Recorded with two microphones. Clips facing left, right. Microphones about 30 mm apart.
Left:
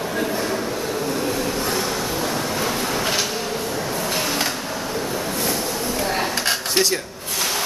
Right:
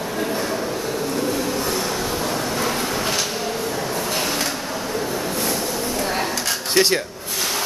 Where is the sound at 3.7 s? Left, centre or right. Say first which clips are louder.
Even; centre.